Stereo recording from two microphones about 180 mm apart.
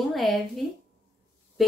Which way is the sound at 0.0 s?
Centre (ahead or behind).